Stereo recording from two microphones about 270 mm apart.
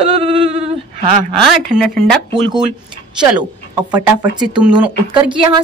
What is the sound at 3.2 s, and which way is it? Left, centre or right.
Speech, centre.